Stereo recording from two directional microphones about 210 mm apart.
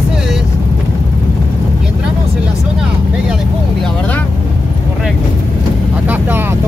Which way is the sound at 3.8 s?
5° left (ahead or behind).